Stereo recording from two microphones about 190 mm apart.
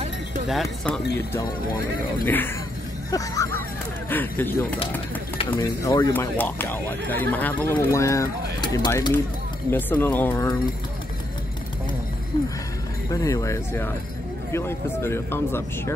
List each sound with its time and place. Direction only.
0.5 s speech: centre (ahead or behind)
2.2 s speech: 10° left (ahead or behind)
13.1 s speech: 15° left (ahead or behind)